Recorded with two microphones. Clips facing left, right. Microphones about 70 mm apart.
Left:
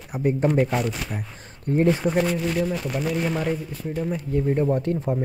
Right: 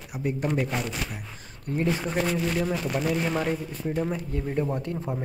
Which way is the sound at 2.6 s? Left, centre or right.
Centre.